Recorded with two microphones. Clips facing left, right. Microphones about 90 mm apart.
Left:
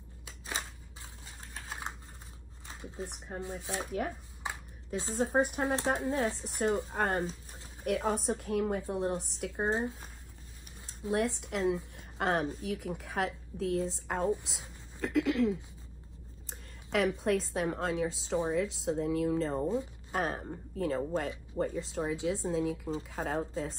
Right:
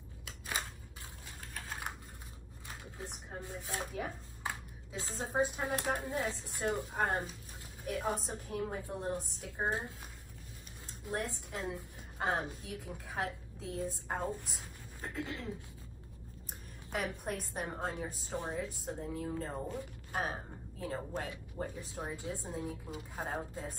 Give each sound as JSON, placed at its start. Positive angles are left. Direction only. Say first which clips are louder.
{"t": 1.2, "sound": "a sound", "louder": "even", "side_deg": 20}
{"t": 3.1, "sound": "speech", "louder": "left 5 dB", "side_deg": 60}
{"t": 4.4, "sound": "a sound", "louder": "left 1 dB", "side_deg": 20}
{"t": 5.2, "sound": "a woman's voice", "louder": "left 5 dB", "side_deg": 60}
{"t": 9.7, "sound": "speech", "louder": "left 5 dB", "side_deg": 20}
{"t": 10.9, "sound": "a woman's voice", "louder": "left 8 dB", "side_deg": 70}
{"t": 16.4, "sound": "a woman's voice", "louder": "left 2 dB", "side_deg": 90}
{"t": 18.5, "sound": "speech", "louder": "left 8 dB", "side_deg": 80}